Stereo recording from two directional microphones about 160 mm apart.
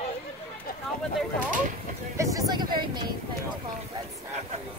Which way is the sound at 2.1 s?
25° right (ahead or behind).